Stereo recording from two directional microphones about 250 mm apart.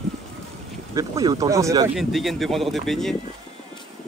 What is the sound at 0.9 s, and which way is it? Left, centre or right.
Speech, centre.